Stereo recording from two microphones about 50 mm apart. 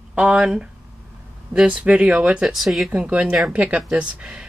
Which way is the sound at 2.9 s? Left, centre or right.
Right.